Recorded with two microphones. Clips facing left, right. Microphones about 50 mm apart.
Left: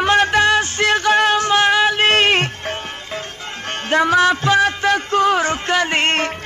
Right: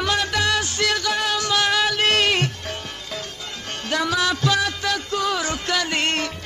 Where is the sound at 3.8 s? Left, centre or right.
Left.